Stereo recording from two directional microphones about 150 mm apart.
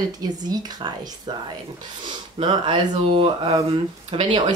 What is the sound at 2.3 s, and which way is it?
Speech, 35° right (ahead or behind).